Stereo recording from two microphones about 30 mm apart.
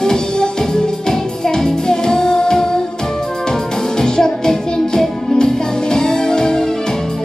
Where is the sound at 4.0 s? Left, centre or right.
Left.